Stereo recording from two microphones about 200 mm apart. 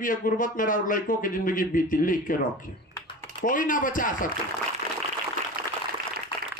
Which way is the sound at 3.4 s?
40° left (ahead or behind).